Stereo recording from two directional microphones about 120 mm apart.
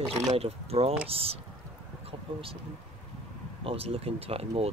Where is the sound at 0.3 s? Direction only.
60° right (ahead or behind).